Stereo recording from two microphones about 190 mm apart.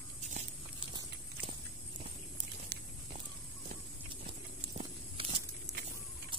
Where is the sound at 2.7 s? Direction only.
55° right (ahead or behind).